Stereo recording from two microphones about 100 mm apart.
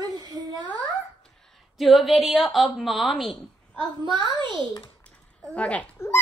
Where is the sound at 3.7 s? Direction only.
50° right (ahead or behind).